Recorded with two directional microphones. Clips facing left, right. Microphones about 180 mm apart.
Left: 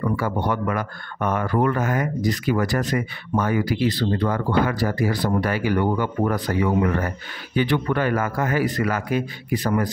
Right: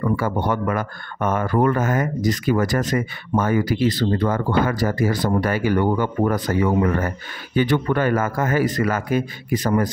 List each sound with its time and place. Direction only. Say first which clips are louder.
0.2 s speech: right 2 dB; 45° right (ahead or behind)